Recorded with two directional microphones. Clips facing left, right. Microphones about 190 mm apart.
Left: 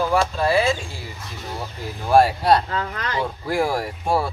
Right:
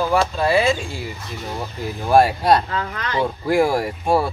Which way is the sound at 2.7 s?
30° left (ahead or behind).